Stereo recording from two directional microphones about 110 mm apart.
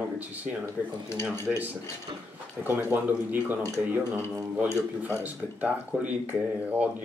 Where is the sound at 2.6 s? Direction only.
15° right (ahead or behind).